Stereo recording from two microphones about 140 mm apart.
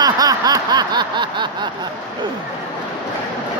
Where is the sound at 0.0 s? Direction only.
25° right (ahead or behind).